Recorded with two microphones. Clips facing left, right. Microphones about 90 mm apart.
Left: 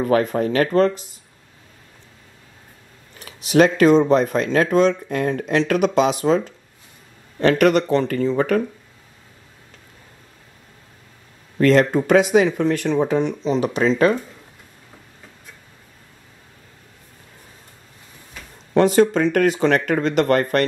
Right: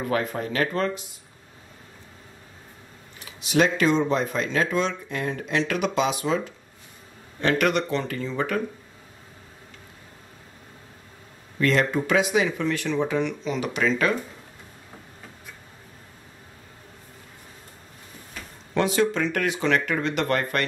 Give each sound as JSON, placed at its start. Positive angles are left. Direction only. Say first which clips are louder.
{"t": 0.0, "sound": "speech", "louder": "left 8 dB", "side_deg": 45}
{"t": 3.2, "sound": "speech", "louder": "left 6 dB", "side_deg": 50}
{"t": 11.5, "sound": "speech", "louder": "left 7 dB", "side_deg": 45}
{"t": 18.7, "sound": "speech", "louder": "left 7 dB", "side_deg": 40}